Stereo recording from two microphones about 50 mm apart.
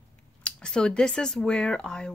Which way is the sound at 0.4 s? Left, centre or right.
Centre.